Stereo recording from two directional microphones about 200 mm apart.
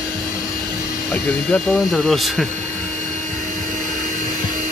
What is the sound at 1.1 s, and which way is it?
Speech, 5° left (ahead or behind).